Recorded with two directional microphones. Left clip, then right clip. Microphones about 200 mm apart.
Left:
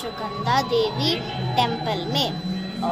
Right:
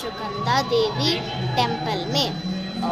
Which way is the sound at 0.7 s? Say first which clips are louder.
Right 1 dB; 20° right (ahead or behind).